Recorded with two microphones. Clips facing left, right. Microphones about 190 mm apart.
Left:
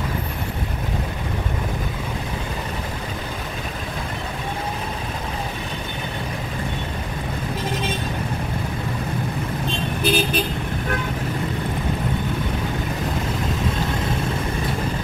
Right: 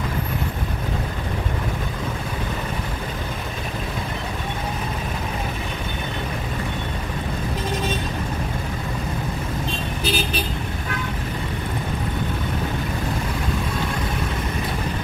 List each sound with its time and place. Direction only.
10.0 s vehicle: 55° left (ahead or behind)